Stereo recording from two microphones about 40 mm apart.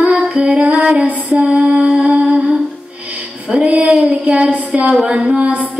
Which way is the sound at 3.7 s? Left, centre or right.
Right.